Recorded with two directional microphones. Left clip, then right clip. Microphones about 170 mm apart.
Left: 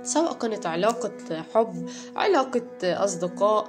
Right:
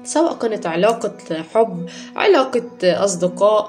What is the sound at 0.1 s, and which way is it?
A woman's voice, 25° left (ahead or behind).